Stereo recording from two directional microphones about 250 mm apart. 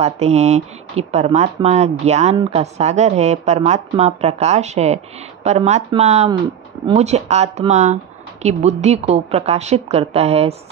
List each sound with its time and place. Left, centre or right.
0.0 s speech: right